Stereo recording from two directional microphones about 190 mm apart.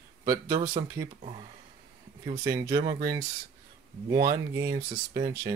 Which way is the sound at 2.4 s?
25° right (ahead or behind).